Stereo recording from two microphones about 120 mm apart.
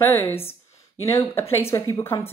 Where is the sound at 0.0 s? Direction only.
20° left (ahead or behind).